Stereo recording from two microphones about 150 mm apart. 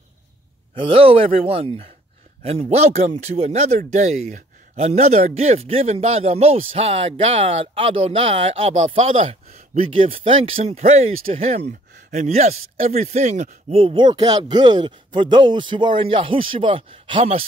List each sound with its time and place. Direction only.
0.7 s a man's voice: 35° right (ahead or behind)